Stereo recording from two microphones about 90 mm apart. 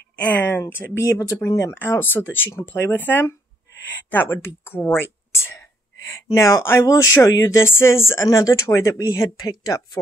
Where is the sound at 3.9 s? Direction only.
20° left (ahead or behind); by 6.6 s 35° left (ahead or behind).